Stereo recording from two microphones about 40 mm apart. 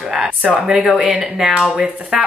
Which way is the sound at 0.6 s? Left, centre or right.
Centre.